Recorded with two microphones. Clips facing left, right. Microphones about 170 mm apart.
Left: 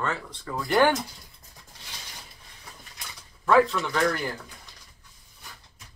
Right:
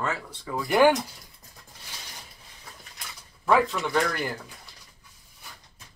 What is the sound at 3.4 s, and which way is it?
Speech, 10° right (ahead or behind).